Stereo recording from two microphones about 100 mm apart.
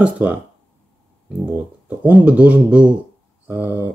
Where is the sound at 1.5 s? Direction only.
15° right (ahead or behind).